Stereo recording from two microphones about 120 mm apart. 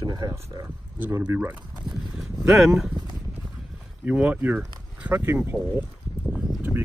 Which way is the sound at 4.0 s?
10° right (ahead or behind).